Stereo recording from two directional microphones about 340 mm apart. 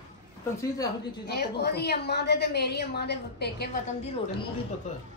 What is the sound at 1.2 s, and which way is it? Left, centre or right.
A woman's voice, left.